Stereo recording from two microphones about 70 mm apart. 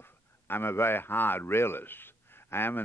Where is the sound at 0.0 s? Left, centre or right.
Left.